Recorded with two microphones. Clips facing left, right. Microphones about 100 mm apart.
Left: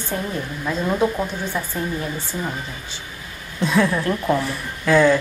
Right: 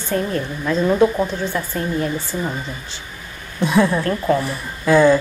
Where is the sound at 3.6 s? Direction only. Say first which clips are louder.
Right 2 dB; 10° right (ahead or behind).